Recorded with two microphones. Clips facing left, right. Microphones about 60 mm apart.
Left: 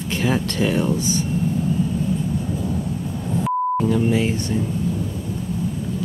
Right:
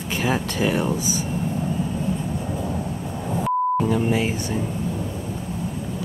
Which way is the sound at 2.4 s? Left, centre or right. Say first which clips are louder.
Left 2 dB; centre.